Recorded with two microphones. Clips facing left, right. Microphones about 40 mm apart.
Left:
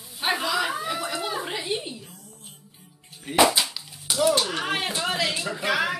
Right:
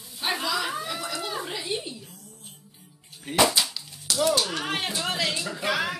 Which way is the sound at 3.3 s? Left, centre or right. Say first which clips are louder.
Left 2 dB; centre.